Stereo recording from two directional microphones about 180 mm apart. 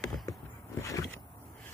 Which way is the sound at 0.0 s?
Centre (ahead or behind).